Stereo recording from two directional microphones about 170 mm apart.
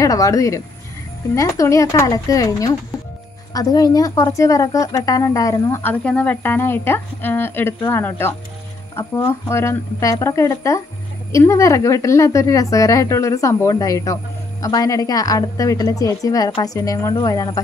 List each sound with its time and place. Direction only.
0.0 s a woman's voice: 20° left (ahead or behind)